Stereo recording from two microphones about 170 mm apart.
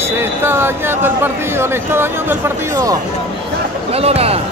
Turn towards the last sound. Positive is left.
turn(degrees=-35)  # may be behind; listen again after turning